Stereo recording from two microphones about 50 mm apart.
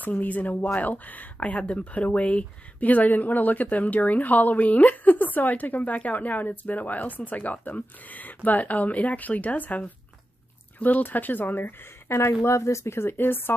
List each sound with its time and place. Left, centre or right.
0.0 s speech: left
12.2 s a woman's voice: left